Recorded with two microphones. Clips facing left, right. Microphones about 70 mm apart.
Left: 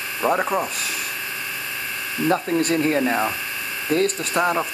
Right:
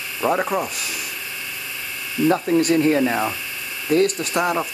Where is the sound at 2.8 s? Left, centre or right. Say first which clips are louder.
Right 3 dB; right.